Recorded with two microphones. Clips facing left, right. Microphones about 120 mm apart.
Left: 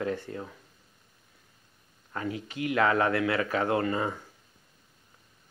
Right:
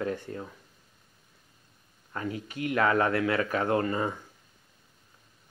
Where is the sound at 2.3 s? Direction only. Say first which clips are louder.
Even; 40° right (ahead or behind).